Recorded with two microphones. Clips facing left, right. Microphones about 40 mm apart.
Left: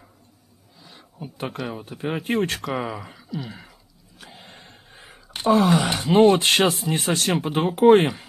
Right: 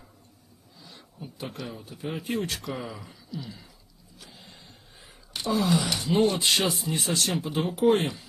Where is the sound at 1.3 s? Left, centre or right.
Left.